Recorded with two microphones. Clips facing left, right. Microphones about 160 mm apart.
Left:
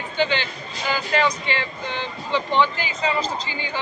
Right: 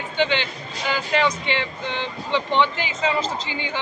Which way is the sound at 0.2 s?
20° right (ahead or behind).